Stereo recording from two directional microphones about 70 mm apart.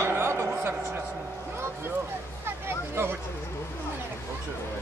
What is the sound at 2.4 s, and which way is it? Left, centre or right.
Hubbub, right.